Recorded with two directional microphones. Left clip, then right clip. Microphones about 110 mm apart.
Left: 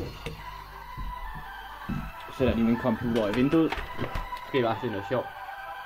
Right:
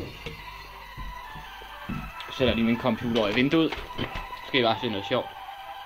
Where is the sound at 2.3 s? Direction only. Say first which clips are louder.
Right 1 dB; 15° left (ahead or behind).